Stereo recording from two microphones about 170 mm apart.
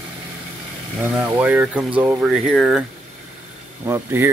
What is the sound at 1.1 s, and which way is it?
Speech, 10° right (ahead or behind).